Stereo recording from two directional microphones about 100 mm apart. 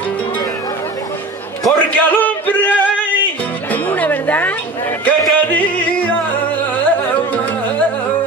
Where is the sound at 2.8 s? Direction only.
15° left (ahead or behind).